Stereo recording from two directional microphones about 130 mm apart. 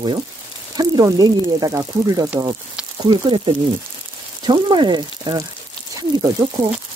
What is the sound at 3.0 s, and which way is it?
Speech, 40° right (ahead or behind).